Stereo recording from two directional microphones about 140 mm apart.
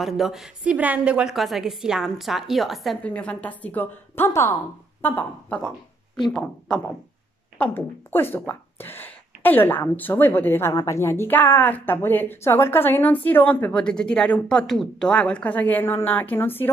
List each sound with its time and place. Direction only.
0.0 s a woman's voice: centre (ahead or behind); by 16.6 s 15° left (ahead or behind)